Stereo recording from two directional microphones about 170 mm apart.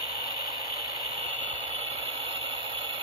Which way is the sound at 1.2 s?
35° right (ahead or behind).